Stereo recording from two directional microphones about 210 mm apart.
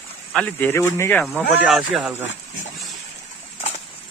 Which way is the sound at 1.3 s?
5° right (ahead or behind).